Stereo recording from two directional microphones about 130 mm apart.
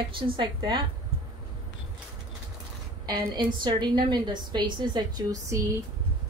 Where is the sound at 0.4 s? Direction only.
35° right (ahead or behind).